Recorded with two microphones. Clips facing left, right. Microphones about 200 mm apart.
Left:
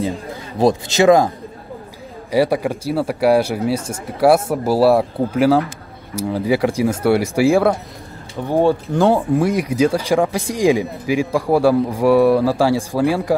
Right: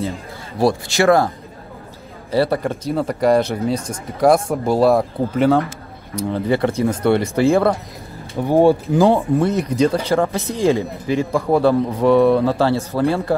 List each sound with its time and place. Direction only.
0.6 s speech: 20° left (ahead or behind)
2.3 s speech: 10° left (ahead or behind)
8.4 s speech: 15° right (ahead or behind)
8.8 s speech: centre (ahead or behind)